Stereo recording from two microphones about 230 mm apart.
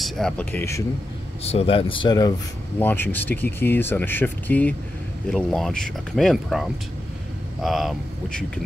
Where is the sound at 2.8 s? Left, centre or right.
Centre.